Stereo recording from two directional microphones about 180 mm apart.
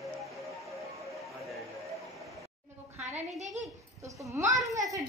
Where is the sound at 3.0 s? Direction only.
40° right (ahead or behind).